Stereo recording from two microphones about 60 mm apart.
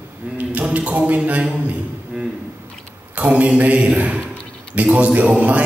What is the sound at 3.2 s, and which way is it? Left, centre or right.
A man's voice, right.